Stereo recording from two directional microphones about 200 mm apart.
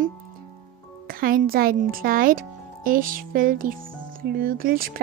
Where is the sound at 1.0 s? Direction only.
45° right (ahead or behind).